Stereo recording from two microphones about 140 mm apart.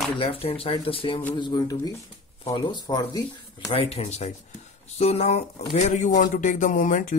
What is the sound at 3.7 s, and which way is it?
A man's voice, 45° left (ahead or behind).